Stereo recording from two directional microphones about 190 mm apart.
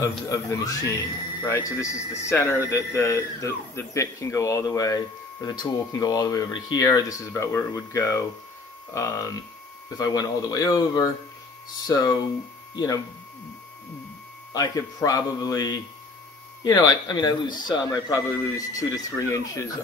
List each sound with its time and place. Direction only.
0.3 s speech: 15° left (ahead or behind)
14.5 s speech: 20° left (ahead or behind)